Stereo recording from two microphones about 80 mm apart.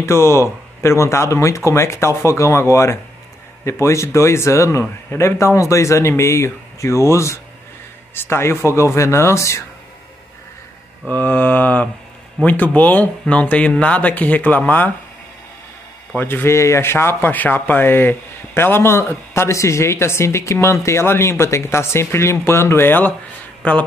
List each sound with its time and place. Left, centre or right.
0.0 s speech: left
11.1 s mantra: left
13.3 s speech: centre
16.2 s speech: left
23.6 s mantra: centre